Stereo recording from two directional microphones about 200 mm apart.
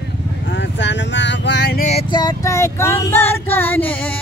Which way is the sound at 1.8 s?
30° left (ahead or behind).